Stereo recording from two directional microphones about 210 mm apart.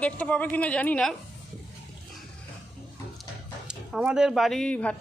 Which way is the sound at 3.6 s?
5° right (ahead or behind).